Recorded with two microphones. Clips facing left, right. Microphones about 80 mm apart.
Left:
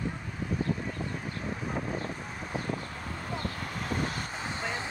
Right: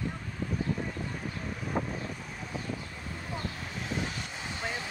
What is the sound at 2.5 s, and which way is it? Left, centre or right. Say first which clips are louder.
Vehicle: left 4 dB; left.